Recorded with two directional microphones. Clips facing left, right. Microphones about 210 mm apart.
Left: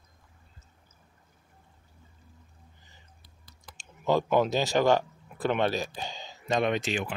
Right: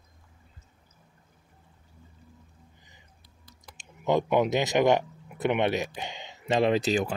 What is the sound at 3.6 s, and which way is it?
Speech, 20° right (ahead or behind).